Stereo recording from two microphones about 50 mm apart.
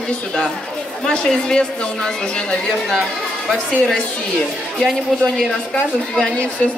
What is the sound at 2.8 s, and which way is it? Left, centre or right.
Speech, centre.